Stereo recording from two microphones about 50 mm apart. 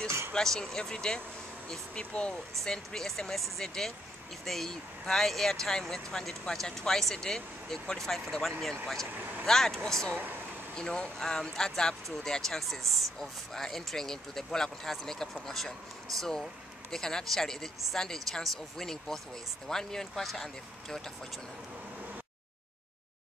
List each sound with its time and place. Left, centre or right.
0.3 s speech: centre
2.6 s speech: centre
9.1 s speech: right
9.5 s speech: centre
10.1 s speech: right
10.7 s speech: centre